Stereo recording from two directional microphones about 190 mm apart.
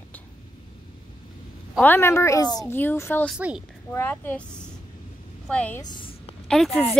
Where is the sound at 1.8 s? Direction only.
10° left (ahead or behind).